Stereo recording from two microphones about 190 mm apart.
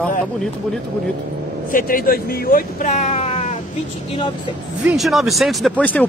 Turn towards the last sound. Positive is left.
turn(degrees=10)  # may be behind; listen again after turning